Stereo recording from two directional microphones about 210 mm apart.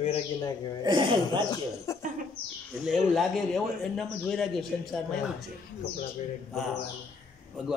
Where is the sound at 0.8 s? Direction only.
25° right (ahead or behind).